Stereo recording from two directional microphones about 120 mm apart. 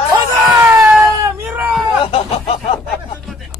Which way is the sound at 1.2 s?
20° right (ahead or behind).